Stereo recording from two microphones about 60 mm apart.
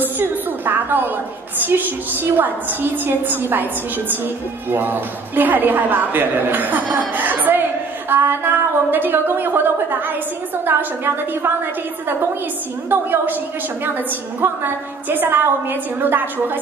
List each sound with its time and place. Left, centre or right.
0.0 s a sound: right
1.6 s a woman's voice: right
4.7 s a woman's voice: right
7.2 s a sound: right
8.1 s a woman's voice: right
10.7 s a woman's voice: right
12.9 s a woman's voice: right
14.4 s a woman's voice: right